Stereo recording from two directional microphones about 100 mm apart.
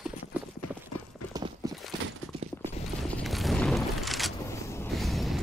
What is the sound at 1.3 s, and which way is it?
Clip-clop, 40° right (ahead or behind).